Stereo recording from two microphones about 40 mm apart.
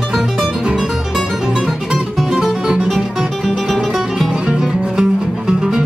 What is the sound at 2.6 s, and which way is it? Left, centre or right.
Music, centre.